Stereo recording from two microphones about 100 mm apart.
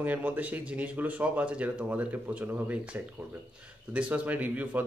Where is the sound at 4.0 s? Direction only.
15° right (ahead or behind).